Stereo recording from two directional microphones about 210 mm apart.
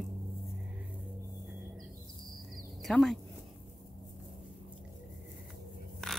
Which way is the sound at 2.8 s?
Centre (ahead or behind).